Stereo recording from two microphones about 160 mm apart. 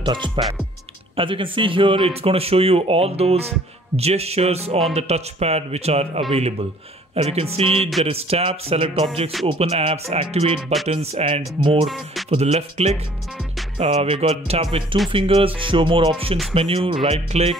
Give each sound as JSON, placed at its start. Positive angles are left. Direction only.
{"t": 0.0, "sound": "speech", "side_deg": -30}